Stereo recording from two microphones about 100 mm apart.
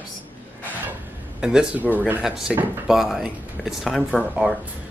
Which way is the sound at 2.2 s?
5° right (ahead or behind).